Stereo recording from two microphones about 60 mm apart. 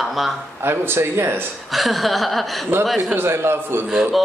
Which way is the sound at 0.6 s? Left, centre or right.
Right.